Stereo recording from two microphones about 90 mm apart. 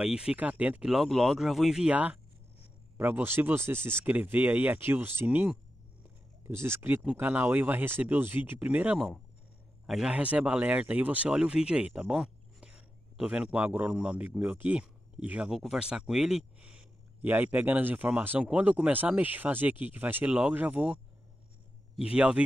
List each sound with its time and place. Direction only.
0.0 s speech: 10° right (ahead or behind)
0.8 s speech: centre (ahead or behind)
9.8 s a man's voice: 5° right (ahead or behind)
10.1 s speech: 15° right (ahead or behind)
22.1 s speech: 15° right (ahead or behind)